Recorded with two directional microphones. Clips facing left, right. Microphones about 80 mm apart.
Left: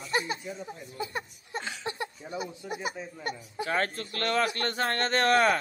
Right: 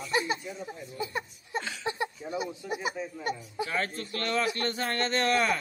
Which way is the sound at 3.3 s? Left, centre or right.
Left.